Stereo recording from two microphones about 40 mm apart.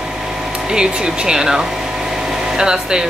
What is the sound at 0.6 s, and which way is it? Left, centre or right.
Speech, centre.